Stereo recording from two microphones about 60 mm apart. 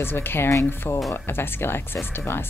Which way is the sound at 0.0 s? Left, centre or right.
Left.